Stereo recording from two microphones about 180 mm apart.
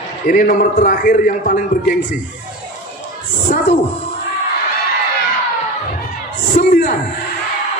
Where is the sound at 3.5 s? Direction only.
55° left (ahead or behind).